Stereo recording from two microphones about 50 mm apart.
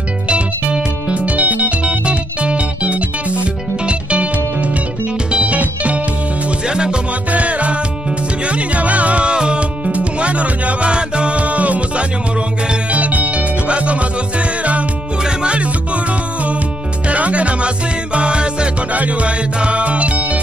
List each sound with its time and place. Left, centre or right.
0.3 s music: right
6.7 s music: centre
17.1 s music: right